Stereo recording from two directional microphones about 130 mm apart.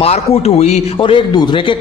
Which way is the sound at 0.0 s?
55° left (ahead or behind).